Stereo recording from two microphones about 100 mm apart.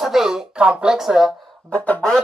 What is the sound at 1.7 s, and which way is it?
Speech, 15° left (ahead or behind).